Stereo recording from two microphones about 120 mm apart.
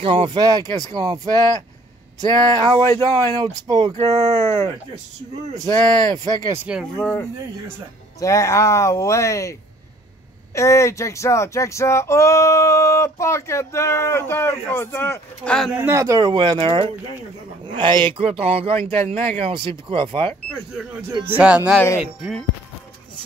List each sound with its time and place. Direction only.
0.0 s speech: 45° right (ahead or behind)
3.9 s speech: 65° right (ahead or behind)
5.5 s speech: 35° right (ahead or behind)
6.8 s speech: 10° left (ahead or behind)
8.2 s speech: 25° left (ahead or behind)
15.4 s speech: 5° left (ahead or behind)
15.7 s a man's voice: 20° right (ahead or behind)
16.3 s a man's voice: 45° right (ahead or behind)
21.4 s speech: 10° right (ahead or behind)